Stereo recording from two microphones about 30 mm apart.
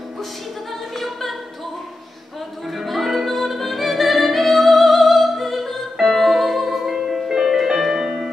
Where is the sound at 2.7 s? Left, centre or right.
Centre.